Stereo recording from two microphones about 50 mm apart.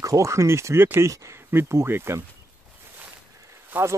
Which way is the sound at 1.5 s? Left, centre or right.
Right.